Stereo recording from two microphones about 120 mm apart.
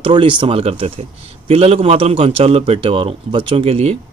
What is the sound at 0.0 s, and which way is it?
A man's voice, 45° right (ahead or behind).